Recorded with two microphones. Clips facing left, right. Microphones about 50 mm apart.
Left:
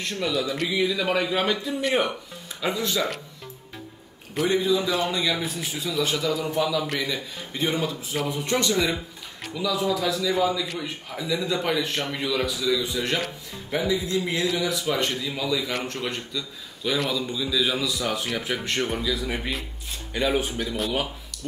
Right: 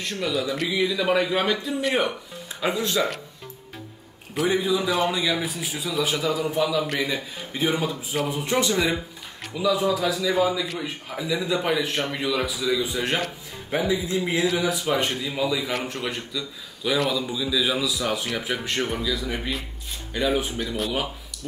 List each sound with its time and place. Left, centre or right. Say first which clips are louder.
0.0 s a man's voice: even; centre
2.6 s a man's voice: right 2 dB; centre
4.4 s a man's voice: even; centre